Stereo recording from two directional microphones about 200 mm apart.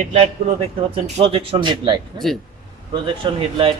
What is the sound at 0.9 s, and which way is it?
Speech, 30° right (ahead or behind).